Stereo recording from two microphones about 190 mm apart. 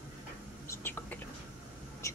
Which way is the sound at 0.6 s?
15° left (ahead or behind).